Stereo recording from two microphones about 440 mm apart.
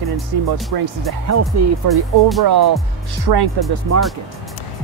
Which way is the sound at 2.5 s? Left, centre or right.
Right.